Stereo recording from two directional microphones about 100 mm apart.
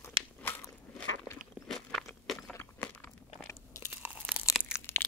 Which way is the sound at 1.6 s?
5° left (ahead or behind).